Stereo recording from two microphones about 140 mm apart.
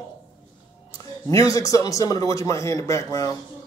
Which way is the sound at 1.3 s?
25° left (ahead or behind).